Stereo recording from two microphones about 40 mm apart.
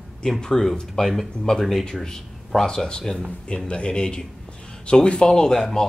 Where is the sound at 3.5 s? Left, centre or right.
Left; by 5.8 s centre.